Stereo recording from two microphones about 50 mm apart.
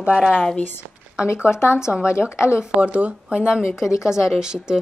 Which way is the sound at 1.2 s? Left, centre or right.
Left.